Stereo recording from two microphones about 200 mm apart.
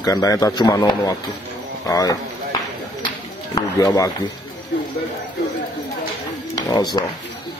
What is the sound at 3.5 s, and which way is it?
Speech, 20° left (ahead or behind).